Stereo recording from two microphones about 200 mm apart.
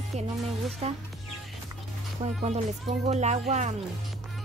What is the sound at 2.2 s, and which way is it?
Speech, 35° right (ahead or behind).